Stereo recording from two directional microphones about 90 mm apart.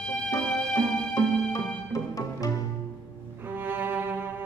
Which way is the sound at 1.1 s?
40° left (ahead or behind).